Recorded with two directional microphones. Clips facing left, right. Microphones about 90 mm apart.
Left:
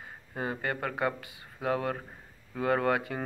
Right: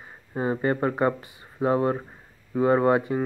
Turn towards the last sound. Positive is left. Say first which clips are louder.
# right 7 dB
turn(degrees=-25)  # may be behind; listen again after turning